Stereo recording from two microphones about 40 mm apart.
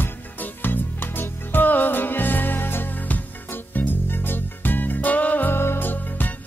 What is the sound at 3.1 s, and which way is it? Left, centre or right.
Music, left.